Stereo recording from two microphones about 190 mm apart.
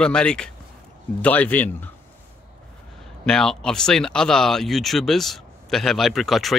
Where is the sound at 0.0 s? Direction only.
5° left (ahead or behind).